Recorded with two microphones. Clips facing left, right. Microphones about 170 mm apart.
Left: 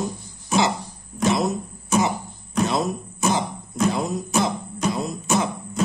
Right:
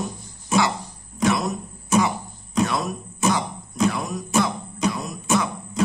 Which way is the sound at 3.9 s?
25° left (ahead or behind).